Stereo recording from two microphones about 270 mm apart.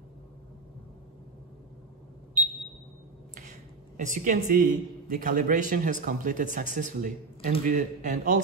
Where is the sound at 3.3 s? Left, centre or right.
Right.